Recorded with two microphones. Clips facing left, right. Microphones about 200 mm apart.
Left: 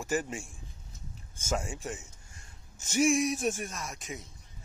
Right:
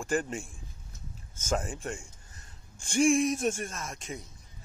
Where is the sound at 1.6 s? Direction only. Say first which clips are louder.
Right 1 dB; centre (ahead or behind).